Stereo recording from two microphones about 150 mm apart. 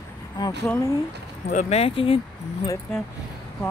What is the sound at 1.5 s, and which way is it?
Speech, 55° left (ahead or behind).